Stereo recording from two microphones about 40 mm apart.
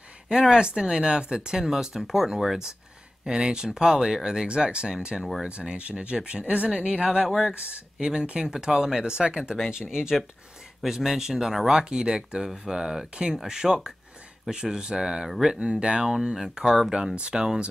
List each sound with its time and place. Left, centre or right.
0.3 s speech: centre
3.3 s speech: centre
7.2 s speech: centre
7.7 s speech: right
10.8 s speech: centre
16.9 s speech: right